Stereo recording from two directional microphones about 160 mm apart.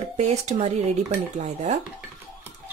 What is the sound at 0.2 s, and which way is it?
Speech, 45° right (ahead or behind).